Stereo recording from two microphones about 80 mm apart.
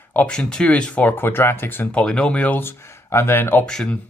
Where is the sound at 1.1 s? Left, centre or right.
Left.